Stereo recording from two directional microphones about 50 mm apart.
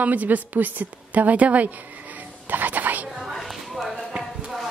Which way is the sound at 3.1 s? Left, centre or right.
Centre.